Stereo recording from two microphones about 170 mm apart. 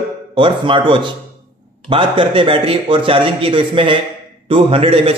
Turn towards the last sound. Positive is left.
turn(degrees=-35)  # may be behind; listen again after turning